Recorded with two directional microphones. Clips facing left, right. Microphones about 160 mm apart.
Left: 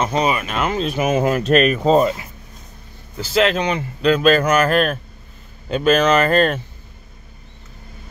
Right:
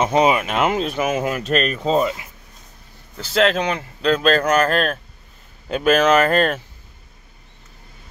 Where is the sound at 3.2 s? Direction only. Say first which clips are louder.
Left 1 dB; centre (ahead or behind).